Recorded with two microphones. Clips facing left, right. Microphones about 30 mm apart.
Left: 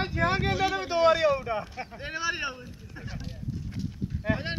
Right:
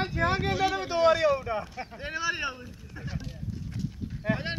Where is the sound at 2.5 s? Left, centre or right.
Centre.